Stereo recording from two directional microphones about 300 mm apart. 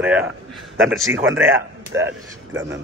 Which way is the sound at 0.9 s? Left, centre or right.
Right.